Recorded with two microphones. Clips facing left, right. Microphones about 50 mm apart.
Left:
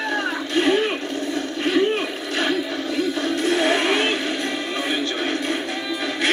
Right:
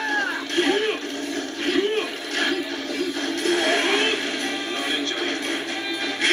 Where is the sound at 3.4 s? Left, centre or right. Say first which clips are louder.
Left 1 dB; left.